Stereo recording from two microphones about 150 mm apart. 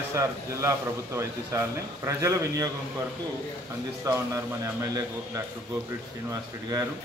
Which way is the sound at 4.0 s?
20° right (ahead or behind).